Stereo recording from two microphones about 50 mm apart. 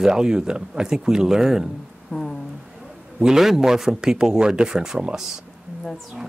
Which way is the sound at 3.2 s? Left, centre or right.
Centre.